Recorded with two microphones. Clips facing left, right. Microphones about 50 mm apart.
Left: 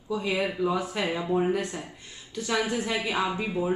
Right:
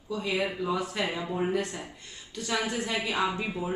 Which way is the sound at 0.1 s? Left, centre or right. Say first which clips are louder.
Left 2 dB; centre.